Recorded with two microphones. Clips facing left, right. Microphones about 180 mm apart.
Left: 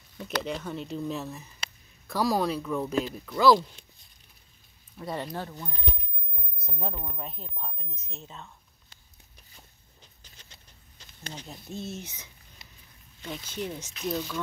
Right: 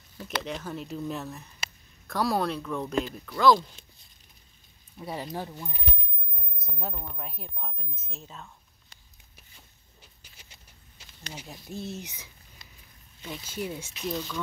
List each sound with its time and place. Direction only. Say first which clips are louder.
0.4 s speech: left 2 dB; centre (ahead or behind)
4.9 s speech: left 1 dB; 5° right (ahead or behind)
6.8 s speech: left 2 dB; centre (ahead or behind)
10.2 s a sound: even; 10° right (ahead or behind)
11.3 s speech: even; 5° right (ahead or behind)
12.6 s a sound: left 1 dB; 25° left (ahead or behind)
13.2 s speech: even; 5° right (ahead or behind)
14.0 s speech: left 2 dB; 5° left (ahead or behind)